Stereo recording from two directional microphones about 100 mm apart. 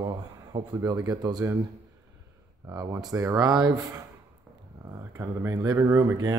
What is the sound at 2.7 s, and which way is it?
Speech, 40° right (ahead or behind).